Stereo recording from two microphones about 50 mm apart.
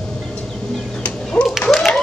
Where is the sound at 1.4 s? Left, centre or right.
Left.